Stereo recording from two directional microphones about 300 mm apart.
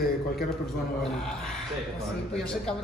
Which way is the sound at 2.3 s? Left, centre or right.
Centre.